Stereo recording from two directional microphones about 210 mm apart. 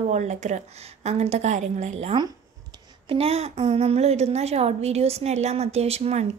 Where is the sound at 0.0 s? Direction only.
35° right (ahead or behind).